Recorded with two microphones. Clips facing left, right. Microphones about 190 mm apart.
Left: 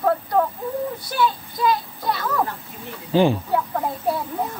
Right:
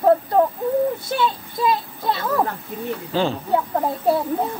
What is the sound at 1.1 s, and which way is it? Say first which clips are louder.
A child's voice: even; 25° right (ahead or behind).